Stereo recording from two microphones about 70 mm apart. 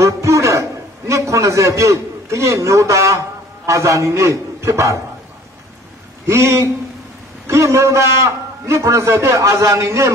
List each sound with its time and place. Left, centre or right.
0.0 s a man's voice: right
6.2 s a man's voice: right